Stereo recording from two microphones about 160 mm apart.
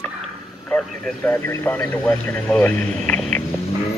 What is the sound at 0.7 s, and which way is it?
Speech, 10° left (ahead or behind).